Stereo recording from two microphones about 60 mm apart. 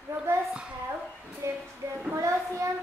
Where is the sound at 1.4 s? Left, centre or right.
Right.